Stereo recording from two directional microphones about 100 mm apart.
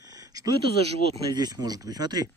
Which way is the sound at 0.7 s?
90° right.